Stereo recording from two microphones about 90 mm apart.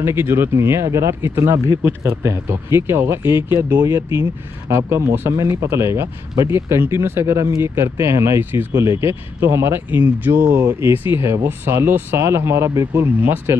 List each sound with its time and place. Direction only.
0.0 s speech: 25° right (ahead or behind)